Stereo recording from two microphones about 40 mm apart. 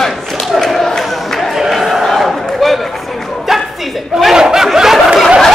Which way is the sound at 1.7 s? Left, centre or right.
Centre.